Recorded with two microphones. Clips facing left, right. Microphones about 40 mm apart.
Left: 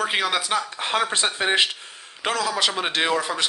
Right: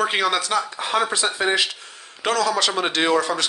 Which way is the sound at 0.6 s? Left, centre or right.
Left.